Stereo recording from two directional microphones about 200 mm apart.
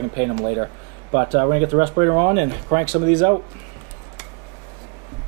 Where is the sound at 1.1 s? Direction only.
20° right (ahead or behind).